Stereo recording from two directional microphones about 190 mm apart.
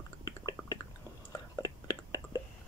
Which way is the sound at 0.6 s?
10° left (ahead or behind).